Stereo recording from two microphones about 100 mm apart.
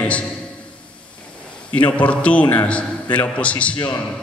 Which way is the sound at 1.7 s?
15° left (ahead or behind).